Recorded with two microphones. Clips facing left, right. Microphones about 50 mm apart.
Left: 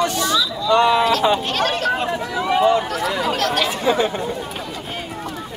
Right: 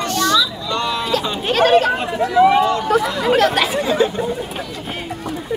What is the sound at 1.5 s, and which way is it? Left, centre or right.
Speech, centre.